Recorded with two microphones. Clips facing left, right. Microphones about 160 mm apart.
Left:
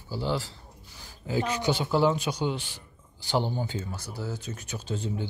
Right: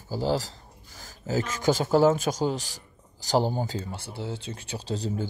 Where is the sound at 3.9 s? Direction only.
25° right (ahead or behind).